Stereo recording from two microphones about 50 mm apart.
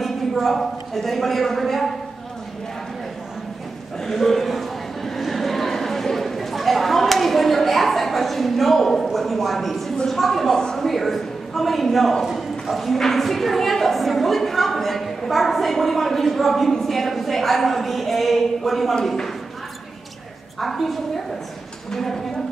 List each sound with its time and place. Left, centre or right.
0.0 s a man's voice: centre
4.0 s a sound: centre
9.9 s a man's voice: centre
20.6 s a man's voice: centre